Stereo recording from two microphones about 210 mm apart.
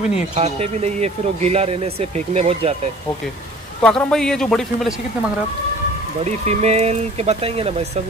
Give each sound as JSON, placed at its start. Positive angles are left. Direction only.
{"t": 0.4, "sound": "speech", "side_deg": -30}
{"t": 3.8, "sound": "a man's voice", "side_deg": 5}
{"t": 6.4, "sound": "speech", "side_deg": -30}